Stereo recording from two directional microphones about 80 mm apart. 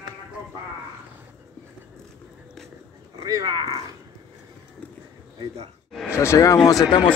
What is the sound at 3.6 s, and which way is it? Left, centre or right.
Speech, right.